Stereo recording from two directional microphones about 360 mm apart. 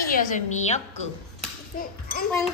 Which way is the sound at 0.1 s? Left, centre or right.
Left.